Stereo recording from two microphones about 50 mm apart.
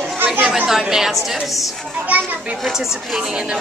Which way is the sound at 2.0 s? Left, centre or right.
Right.